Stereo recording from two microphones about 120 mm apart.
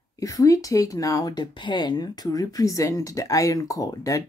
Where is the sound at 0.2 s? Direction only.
30° left (ahead or behind).